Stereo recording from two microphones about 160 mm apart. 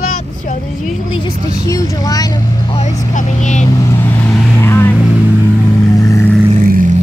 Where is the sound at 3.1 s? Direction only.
50° left (ahead or behind).